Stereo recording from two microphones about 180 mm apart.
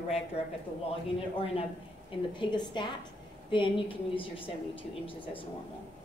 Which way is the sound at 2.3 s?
25° left (ahead or behind).